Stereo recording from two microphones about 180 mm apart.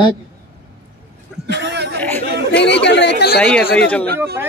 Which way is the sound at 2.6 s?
70° left (ahead or behind).